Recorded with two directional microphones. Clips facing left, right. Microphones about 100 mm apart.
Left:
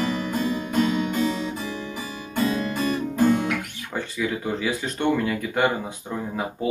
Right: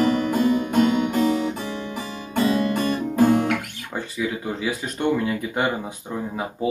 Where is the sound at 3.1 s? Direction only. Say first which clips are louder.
Right 3 dB; 60° right (ahead or behind).